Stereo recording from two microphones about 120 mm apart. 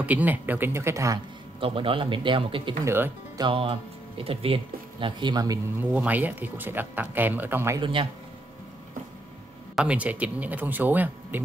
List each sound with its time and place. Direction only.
0.0 s speech: 15° right (ahead or behind)
1.6 s speech: 45° right (ahead or behind)
2.8 s speech: 20° right (ahead or behind)
3.3 s speech: 45° right (ahead or behind)
5.0 s speech: 35° right (ahead or behind)
5.8 s speech: 15° right (ahead or behind)
7.8 s speech: 45° right (ahead or behind)
9.8 s speech: 10° right (ahead or behind)